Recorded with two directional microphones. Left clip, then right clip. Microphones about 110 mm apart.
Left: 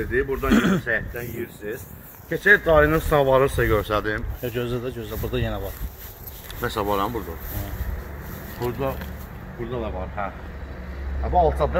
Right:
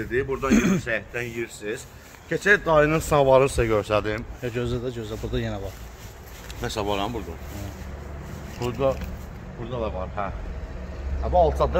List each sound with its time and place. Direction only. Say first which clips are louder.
0.1 s speech: left 1 dB; 35° right (ahead or behind)
0.5 s speech: left 2 dB; 15° right (ahead or behind)
6.6 s speech: left 3 dB; centre (ahead or behind)
8.5 s speech: left 1 dB; 15° right (ahead or behind)
9.7 s speech: right 1 dB; 40° right (ahead or behind)